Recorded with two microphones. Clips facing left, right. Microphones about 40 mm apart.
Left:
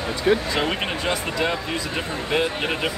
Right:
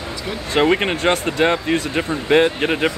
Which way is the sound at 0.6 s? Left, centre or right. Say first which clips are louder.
Right 8 dB; right.